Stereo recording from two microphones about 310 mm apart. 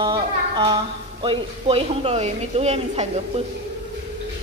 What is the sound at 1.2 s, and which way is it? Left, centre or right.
A woman's voice, centre.